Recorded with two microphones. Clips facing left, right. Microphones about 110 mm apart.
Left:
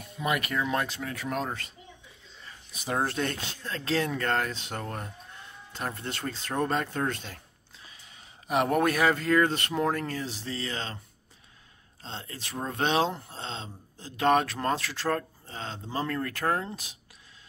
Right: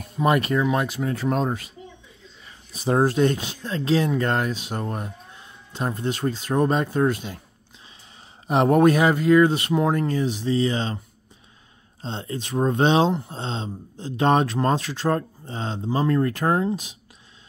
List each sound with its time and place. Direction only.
0.0 s speech: 40° right (ahead or behind)
0.6 s speech: 15° right (ahead or behind)
1.0 s speech: 30° right (ahead or behind)
2.7 s speech: 30° right (ahead or behind)
3.1 s speech: 20° right (ahead or behind)
8.5 s speech: 30° right (ahead or behind)
12.0 s speech: 25° right (ahead or behind)